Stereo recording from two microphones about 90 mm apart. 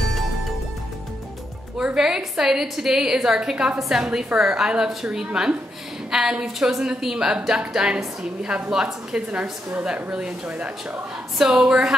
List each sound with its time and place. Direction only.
1.8 s a woman's voice: 5° right (ahead or behind)